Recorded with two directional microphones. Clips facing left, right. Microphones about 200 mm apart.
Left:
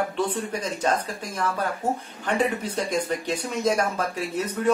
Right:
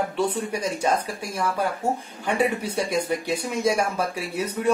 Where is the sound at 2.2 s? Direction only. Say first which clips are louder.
Right 1 dB; 10° right (ahead or behind).